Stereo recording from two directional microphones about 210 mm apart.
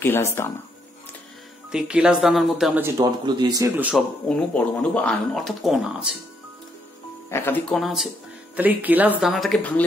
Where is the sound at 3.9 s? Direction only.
Centre (ahead or behind).